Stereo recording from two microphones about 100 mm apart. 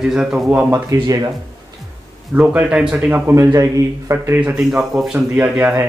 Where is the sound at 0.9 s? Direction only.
40° right (ahead or behind).